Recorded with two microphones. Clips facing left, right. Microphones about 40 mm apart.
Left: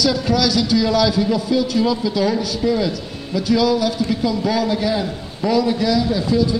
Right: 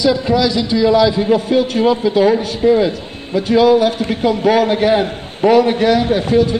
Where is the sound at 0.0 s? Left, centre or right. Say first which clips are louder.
Right 4 dB; right.